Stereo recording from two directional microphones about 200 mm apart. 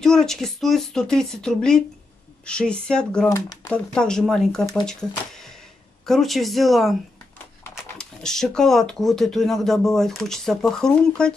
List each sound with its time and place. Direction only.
0.0 s speech: centre (ahead or behind)
3.3 s speech: 15° left (ahead or behind)
3.7 s speech: 5° left (ahead or behind)